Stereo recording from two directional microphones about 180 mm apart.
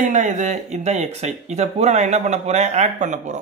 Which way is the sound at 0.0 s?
45° right (ahead or behind).